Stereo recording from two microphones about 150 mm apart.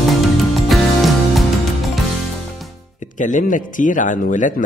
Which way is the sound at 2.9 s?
55° left (ahead or behind).